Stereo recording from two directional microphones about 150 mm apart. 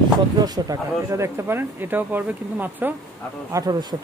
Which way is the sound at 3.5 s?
25° right (ahead or behind).